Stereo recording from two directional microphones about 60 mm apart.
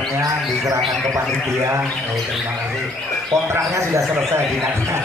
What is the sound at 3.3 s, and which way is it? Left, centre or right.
Speech, right.